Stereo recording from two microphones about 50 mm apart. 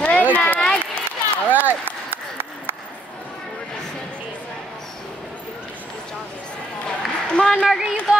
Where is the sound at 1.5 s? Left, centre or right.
Right.